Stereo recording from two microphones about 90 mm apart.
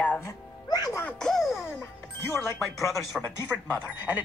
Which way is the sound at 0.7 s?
50° left (ahead or behind).